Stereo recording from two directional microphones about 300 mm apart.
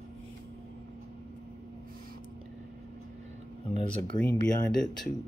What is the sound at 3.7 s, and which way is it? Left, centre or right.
Speech, right.